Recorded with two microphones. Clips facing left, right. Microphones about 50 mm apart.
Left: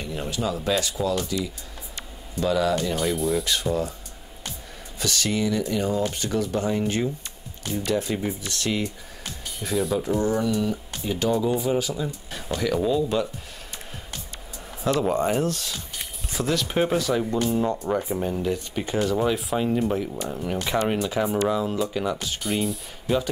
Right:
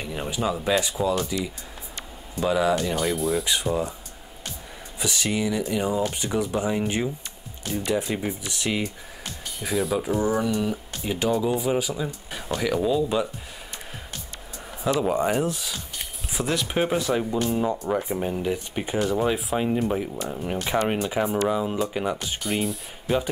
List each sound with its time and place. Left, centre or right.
0.0 s speech: centre
3.0 s speech: centre
3.4 s speech: centre
4.9 s speech: centre
9.4 s speech: centre
14.8 s speech: centre
16.4 s speech: right
21.3 s speech: centre
21.5 s speech: centre
22.4 s speech: centre
23.0 s speech: centre